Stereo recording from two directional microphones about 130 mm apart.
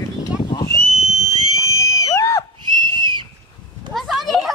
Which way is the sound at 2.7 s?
35° right (ahead or behind).